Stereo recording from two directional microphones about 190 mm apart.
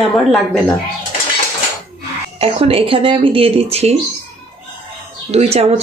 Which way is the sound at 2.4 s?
30° right (ahead or behind).